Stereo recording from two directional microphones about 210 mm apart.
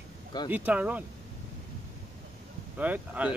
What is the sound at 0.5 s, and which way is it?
Speech, 5° right (ahead or behind).